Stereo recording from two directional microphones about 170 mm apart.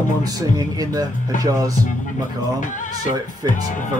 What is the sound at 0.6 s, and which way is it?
Speech, 20° right (ahead or behind).